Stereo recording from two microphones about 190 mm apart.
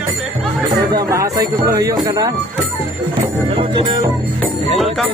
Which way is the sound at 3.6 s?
25° right (ahead or behind).